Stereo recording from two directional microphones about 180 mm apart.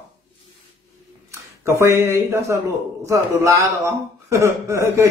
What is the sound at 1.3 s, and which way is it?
Speech, 15° right (ahead or behind).